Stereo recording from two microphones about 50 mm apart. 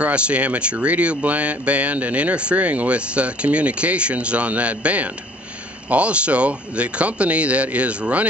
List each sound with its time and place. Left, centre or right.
0.0 s speech: right